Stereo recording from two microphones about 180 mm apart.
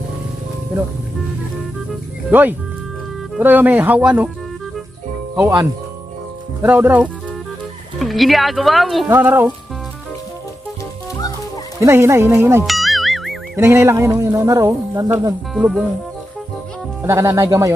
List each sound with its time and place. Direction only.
2.3 s speech: 10° right (ahead or behind)
5.3 s speech: 15° right (ahead or behind)
9.1 s speech: 10° right (ahead or behind)
11.8 s speech: 15° right (ahead or behind)
12.6 s music: centre (ahead or behind)
13.6 s speech: 15° right (ahead or behind)
15.5 s speech: centre (ahead or behind)
17.0 s speech: 15° right (ahead or behind)